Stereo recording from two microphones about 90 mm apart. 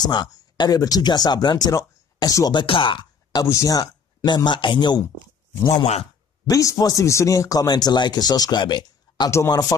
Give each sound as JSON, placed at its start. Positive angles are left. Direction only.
{"t": 0.0, "sound": "speech", "side_deg": 50}
{"t": 2.5, "sound": "speech", "side_deg": 75}
{"t": 3.4, "sound": "speech", "side_deg": 35}
{"t": 6.4, "sound": "speech", "side_deg": 40}
{"t": 9.5, "sound": "speech", "side_deg": 40}